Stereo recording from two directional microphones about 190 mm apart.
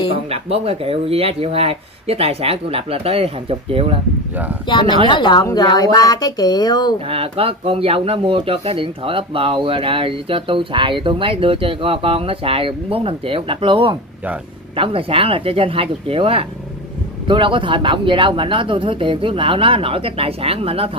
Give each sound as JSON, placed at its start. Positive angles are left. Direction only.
{"t": 0.3, "sound": "speech", "side_deg": -30}
{"t": 5.0, "sound": "speech", "side_deg": 25}
{"t": 7.1, "sound": "speech", "side_deg": -30}